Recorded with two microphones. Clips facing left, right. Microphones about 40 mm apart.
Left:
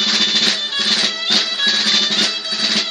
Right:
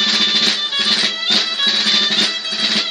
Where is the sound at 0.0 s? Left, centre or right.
Centre.